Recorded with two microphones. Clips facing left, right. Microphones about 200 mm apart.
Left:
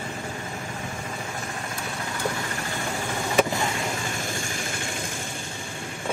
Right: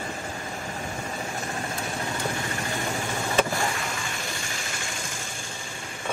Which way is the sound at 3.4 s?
20° left (ahead or behind).